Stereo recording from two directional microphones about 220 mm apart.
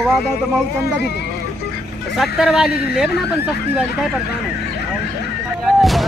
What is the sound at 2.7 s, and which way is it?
Speech, 45° left (ahead or behind).